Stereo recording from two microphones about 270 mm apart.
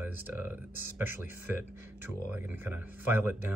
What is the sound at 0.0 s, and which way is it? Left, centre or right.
Speech, centre.